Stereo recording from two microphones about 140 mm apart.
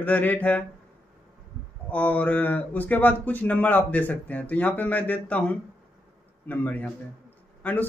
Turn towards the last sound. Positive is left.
turn(degrees=10)  # may be behind; listen again after turning